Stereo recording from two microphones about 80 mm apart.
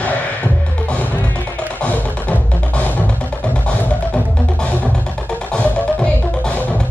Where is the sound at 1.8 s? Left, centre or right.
Centre.